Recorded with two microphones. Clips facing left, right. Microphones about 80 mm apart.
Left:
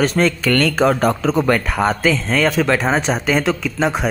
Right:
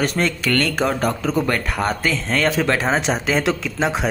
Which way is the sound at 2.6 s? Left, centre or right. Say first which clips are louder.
Left 2 dB; centre.